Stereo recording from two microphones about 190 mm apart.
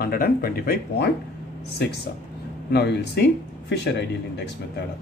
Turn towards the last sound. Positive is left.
turn(degrees=65)  # may be behind; listen again after turning